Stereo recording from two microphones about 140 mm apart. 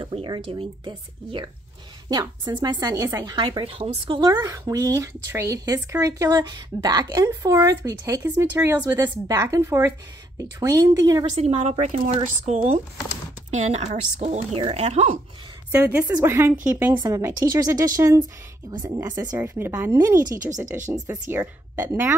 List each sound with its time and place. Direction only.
0.0 s speech: 35° right (ahead or behind)
4.4 s speech: 25° right (ahead or behind)
11.3 s speech: 50° right (ahead or behind)
15.7 s speech: 15° right (ahead or behind)